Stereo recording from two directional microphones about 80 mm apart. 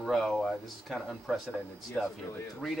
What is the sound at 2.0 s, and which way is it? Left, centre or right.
Speech, centre.